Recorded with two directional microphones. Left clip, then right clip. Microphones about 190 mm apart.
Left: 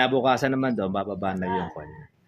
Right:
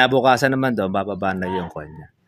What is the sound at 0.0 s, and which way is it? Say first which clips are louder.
Speech: right 6 dB; 50° right (ahead or behind).